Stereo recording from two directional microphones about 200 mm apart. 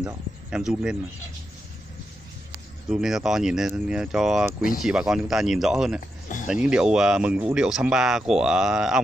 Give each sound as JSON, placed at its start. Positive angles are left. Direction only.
{"t": 0.5, "sound": "speech", "side_deg": -5}
{"t": 2.9, "sound": "speech", "side_deg": 0}